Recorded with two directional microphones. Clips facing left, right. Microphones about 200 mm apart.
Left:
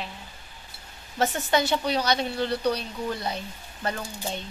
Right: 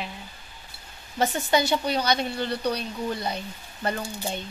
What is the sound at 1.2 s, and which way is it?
Speech, centre (ahead or behind).